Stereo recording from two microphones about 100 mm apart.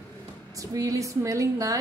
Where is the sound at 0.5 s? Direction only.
35° right (ahead or behind).